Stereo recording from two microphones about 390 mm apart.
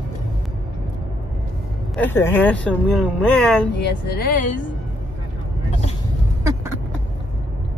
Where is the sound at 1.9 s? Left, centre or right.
Centre.